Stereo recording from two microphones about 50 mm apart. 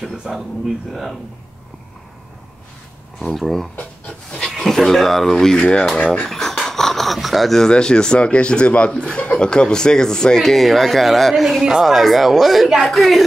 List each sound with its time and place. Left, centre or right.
3.2 s a man's voice: centre
6.2 s a sound: centre
7.7 s a man's voice: centre